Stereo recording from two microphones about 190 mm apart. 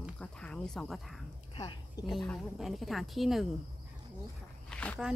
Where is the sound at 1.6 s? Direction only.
20° left (ahead or behind).